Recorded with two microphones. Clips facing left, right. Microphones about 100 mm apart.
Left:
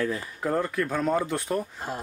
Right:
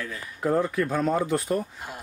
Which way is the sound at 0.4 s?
5° right (ahead or behind).